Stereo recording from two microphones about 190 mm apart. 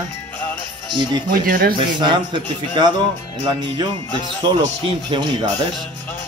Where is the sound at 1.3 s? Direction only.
50° right (ahead or behind).